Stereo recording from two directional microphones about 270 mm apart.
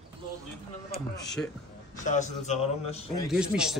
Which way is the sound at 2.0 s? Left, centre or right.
Left.